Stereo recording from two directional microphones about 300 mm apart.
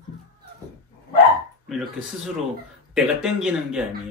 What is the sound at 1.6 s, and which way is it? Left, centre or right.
Speech, centre.